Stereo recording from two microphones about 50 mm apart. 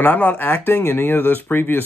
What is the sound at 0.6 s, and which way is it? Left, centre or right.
Speech, left.